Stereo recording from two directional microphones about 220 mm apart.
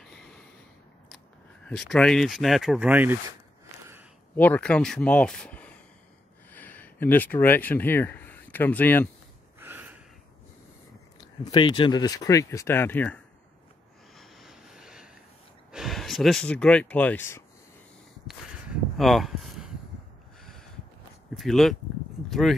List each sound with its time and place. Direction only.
1.7 s speech: centre (ahead or behind)
4.4 s speech: 5° left (ahead or behind)
9.6 s a sound: 10° right (ahead or behind)
11.1 s speech: 20° left (ahead or behind)
14.1 s vehicle: centre (ahead or behind)
15.7 s speech: centre (ahead or behind)
18.9 s speech: centre (ahead or behind)
21.4 s speech: centre (ahead or behind)